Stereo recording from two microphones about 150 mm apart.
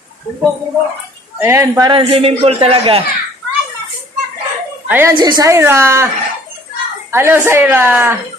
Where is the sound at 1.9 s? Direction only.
35° right (ahead or behind).